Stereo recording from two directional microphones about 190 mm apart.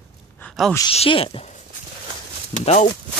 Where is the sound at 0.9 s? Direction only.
30° left (ahead or behind).